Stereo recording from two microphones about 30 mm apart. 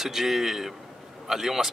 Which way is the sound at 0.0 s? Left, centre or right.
Centre.